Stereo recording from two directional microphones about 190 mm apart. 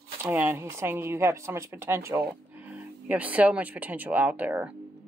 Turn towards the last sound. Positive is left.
turn(degrees=-10)  # may be behind; listen again after turning